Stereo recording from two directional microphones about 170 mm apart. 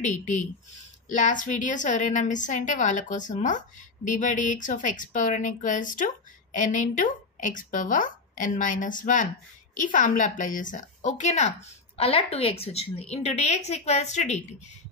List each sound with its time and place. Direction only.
0.0 s a woman's voice: 45° left (ahead or behind)